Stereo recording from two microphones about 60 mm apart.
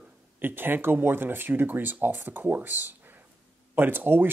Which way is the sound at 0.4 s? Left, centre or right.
Right.